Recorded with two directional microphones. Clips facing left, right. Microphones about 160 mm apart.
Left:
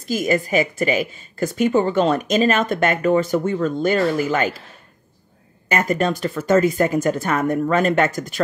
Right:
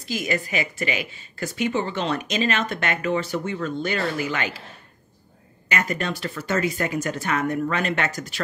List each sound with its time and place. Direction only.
0.0 s speech: 45° left (ahead or behind)
5.7 s speech: 45° left (ahead or behind)